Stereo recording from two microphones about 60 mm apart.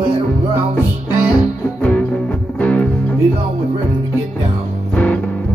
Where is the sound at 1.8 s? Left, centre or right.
Centre.